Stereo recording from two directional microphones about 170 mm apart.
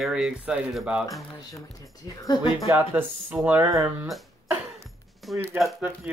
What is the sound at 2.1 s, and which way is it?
Speech, 20° left (ahead or behind).